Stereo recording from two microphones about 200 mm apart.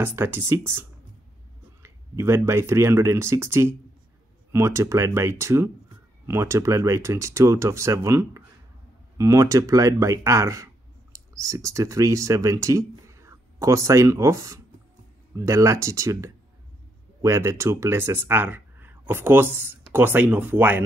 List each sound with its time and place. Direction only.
0.0 s speech: 10° right (ahead or behind)